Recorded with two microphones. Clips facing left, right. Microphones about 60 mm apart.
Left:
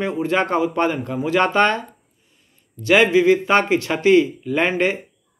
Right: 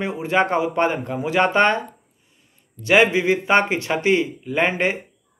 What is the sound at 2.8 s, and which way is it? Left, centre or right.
A man's voice, right.